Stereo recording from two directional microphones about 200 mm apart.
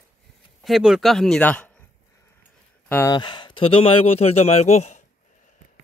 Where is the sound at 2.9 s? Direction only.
10° left (ahead or behind).